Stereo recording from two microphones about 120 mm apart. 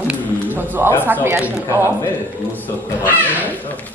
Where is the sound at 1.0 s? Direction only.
20° right (ahead or behind).